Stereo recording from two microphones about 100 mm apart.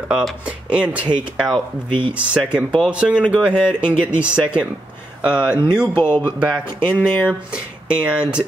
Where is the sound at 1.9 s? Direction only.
55° right (ahead or behind).